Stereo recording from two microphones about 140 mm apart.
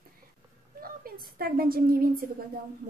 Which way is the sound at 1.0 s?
90° right.